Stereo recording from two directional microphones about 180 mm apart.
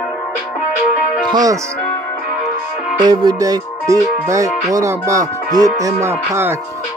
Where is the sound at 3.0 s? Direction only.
25° right (ahead or behind).